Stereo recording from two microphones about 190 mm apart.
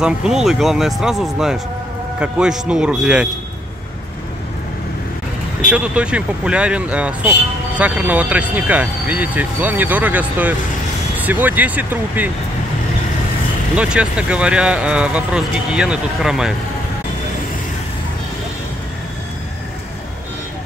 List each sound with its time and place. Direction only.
0.0 s speech: 5° right (ahead or behind)
5.7 s speech: 5° right (ahead or behind)
13.7 s speech: 5° right (ahead or behind)